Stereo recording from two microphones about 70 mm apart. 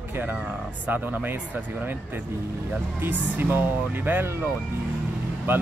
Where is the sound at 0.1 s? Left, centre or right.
Right.